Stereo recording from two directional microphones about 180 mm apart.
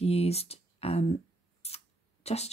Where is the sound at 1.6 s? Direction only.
35° left (ahead or behind).